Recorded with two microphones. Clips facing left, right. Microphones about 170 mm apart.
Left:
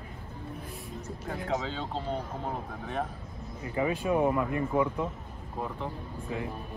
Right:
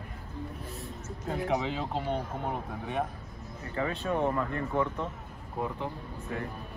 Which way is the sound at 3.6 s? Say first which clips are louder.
Left 3 dB; 10° left (ahead or behind).